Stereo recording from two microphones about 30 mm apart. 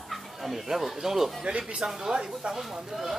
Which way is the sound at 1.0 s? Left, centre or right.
Centre.